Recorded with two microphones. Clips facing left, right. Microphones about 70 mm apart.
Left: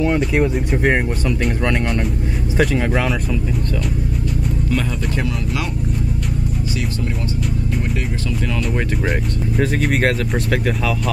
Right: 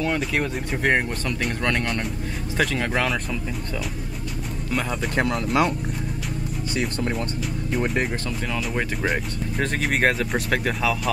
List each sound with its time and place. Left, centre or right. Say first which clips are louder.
0.0 s speech: left 7 dB; centre
5.1 s speech: right 1 dB; right
8.5 s speech: left 4 dB; centre